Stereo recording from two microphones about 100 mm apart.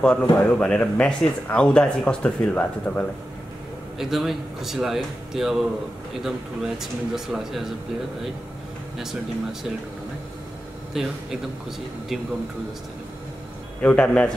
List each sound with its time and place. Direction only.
0.0 s speech: 10° left (ahead or behind)
4.0 s speech: 5° right (ahead or behind)
8.9 s speech: 5° right (ahead or behind)
10.9 s speech: 5° right (ahead or behind)
13.7 s speech: 15° left (ahead or behind)